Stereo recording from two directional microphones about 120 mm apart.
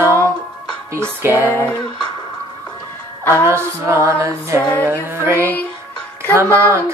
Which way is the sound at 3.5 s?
25° right (ahead or behind).